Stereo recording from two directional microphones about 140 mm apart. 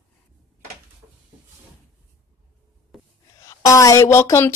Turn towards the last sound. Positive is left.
turn(degrees=20)  # may be behind; listen again after turning